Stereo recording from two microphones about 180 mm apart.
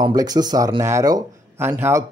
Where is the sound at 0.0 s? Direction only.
20° right (ahead or behind).